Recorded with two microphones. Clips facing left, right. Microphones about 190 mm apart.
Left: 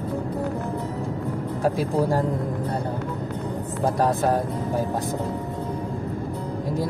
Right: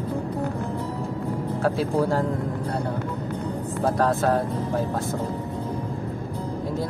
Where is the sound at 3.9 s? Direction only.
15° left (ahead or behind).